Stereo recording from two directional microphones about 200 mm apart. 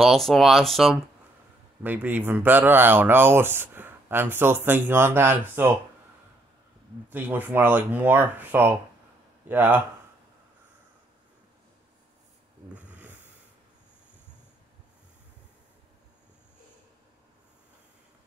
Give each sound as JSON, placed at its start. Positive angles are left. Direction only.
{"t": 0.0, "sound": "speech", "side_deg": 0}
{"t": 7.1, "sound": "speech", "side_deg": -10}
{"t": 12.7, "sound": "a sound", "side_deg": -5}